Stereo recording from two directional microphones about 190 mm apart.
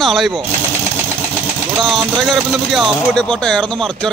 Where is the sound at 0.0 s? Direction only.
Centre (ahead or behind).